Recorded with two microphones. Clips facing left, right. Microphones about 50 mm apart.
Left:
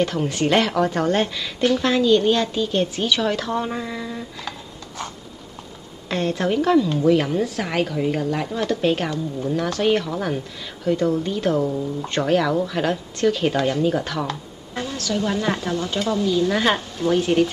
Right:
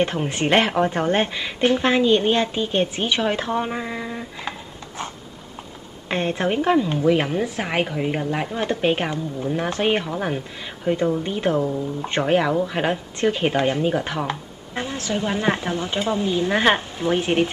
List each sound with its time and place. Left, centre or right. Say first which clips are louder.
0.0 s a woman's voice: left 1 dB; right